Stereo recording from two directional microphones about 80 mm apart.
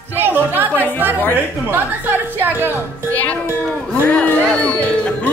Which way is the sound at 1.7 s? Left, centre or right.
Right.